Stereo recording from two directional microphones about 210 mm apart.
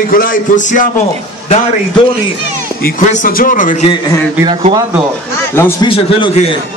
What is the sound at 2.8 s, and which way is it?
A man's voice, 35° left (ahead or behind).